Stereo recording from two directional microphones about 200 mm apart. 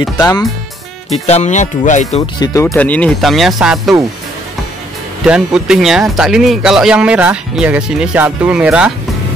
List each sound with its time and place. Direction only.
0.2 s speech: 20° left (ahead or behind)
1.1 s speech: 35° left (ahead or behind)
2.4 s speech: 15° left (ahead or behind); by 3.9 s centre (ahead or behind)
5.2 s speech: 5° right (ahead or behind)